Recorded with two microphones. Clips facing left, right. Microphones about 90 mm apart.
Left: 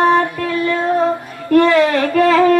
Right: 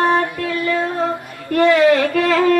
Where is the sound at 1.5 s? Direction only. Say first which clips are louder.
Left 1 dB; 35° left (ahead or behind).